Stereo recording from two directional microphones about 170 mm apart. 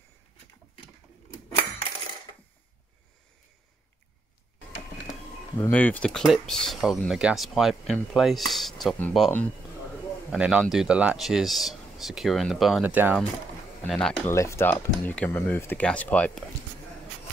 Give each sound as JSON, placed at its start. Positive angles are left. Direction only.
{"t": 5.6, "sound": "speech", "side_deg": 10}
{"t": 10.3, "sound": "speech", "side_deg": -5}
{"t": 13.8, "sound": "speech", "side_deg": 5}
{"t": 14.3, "sound": "speech", "side_deg": 15}